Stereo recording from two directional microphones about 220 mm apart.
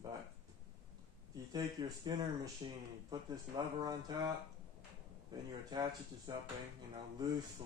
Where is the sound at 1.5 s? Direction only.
20° right (ahead or behind).